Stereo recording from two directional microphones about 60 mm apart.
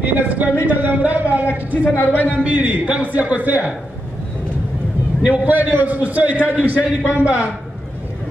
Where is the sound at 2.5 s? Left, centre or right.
Right.